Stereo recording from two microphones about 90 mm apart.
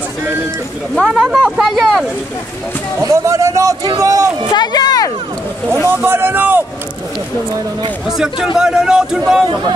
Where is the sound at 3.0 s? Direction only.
35° right (ahead or behind).